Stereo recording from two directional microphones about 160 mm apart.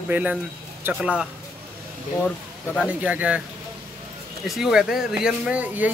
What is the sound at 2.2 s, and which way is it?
Speech, 10° left (ahead or behind).